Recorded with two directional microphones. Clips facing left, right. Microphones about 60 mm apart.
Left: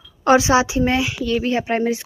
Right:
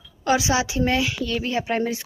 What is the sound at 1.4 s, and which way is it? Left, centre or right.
Speech, left.